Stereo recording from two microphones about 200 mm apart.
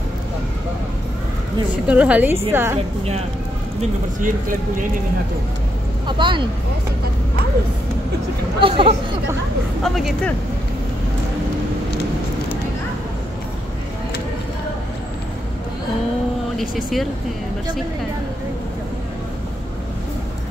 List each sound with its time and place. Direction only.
1.9 s a woman's voice: 5° right (ahead or behind)
4.2 s speech: 40° right (ahead or behind)
6.0 s speech: 25° right (ahead or behind)
8.5 s speech: 25° right (ahead or behind)
9.8 s speech: centre (ahead or behind)
16.5 s speech: centre (ahead or behind)